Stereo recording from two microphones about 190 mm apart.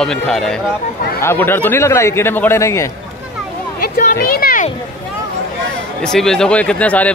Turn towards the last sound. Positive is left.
turn(degrees=5)  # may be behind; listen again after turning